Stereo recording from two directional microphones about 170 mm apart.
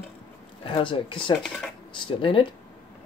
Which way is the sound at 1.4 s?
5° left (ahead or behind).